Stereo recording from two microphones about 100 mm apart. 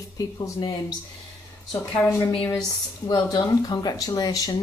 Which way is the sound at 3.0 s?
45° left (ahead or behind).